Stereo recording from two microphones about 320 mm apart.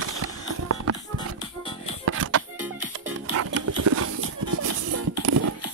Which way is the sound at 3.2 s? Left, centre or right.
Right.